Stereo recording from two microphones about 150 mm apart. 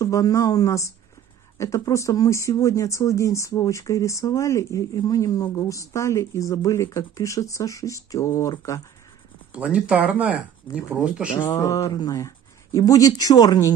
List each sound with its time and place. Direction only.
0.0 s speech: 25° left (ahead or behind)
9.5 s speech: 10° right (ahead or behind)
11.3 s speech: 20° left (ahead or behind)